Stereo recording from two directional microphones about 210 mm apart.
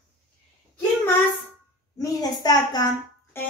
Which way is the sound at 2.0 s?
20° left (ahead or behind).